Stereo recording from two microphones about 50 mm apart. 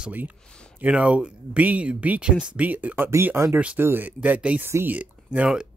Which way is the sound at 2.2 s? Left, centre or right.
Centre.